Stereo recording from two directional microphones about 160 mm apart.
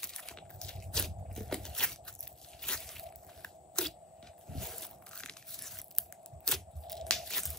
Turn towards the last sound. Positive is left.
turn(degrees=0)  # may be behind; listen again after turning